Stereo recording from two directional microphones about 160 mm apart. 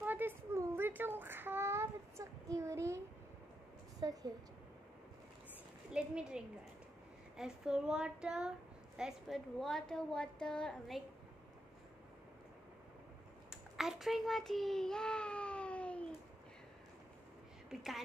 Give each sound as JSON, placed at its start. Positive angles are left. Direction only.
{"t": 0.0, "sound": "child singing", "side_deg": -10}
{"t": 4.0, "sound": "a woman's voice", "side_deg": -25}
{"t": 5.9, "sound": "a woman's voice", "side_deg": -5}
{"t": 13.5, "sound": "child singing", "side_deg": 0}
{"t": 17.6, "sound": "a woman's voice", "side_deg": 0}